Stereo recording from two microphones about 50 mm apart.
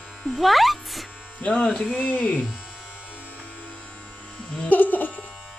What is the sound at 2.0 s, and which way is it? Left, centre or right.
Speech, left.